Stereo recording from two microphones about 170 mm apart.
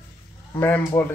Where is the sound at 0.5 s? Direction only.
10° left (ahead or behind).